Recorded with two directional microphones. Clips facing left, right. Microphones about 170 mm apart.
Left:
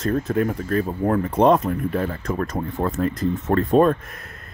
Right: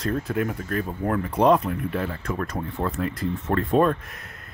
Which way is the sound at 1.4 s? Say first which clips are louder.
Left 1 dB; 45° left (ahead or behind).